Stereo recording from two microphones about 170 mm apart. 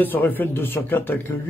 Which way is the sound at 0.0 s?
10° left (ahead or behind).